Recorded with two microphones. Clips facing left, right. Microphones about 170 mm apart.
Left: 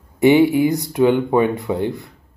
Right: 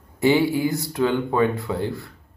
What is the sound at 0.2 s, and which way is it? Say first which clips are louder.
Speech: left 6 dB; 20° left (ahead or behind).